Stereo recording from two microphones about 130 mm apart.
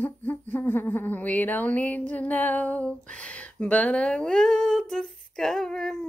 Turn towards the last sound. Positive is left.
turn(degrees=5)  # may be behind; listen again after turning